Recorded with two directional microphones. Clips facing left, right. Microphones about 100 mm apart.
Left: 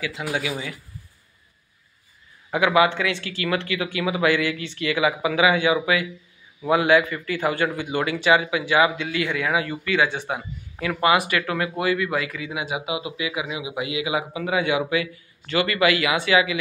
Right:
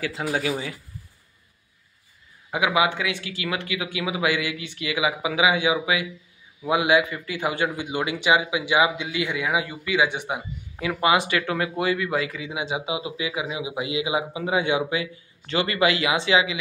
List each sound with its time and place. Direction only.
0.0 s speech: 40° right (ahead or behind)
2.5 s a man's voice: 10° right (ahead or behind)